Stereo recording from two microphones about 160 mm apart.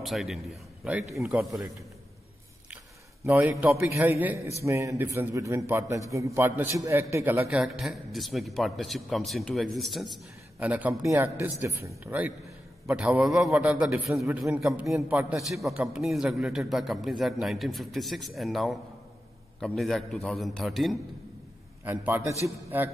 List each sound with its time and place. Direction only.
0.0 s a man's voice: centre (ahead or behind)
3.3 s a man's voice: 10° right (ahead or behind)
7.4 s a man's voice: 5° right (ahead or behind)
21.8 s a man's voice: 10° right (ahead or behind)